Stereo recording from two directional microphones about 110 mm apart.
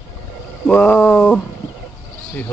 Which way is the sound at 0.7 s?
10° left (ahead or behind).